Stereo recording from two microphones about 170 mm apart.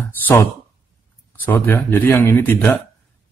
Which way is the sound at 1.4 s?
10° left (ahead or behind).